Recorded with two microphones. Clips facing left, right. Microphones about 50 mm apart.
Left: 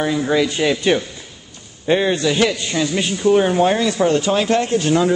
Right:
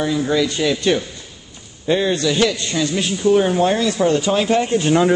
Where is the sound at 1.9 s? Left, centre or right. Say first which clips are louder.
Left 1 dB; centre.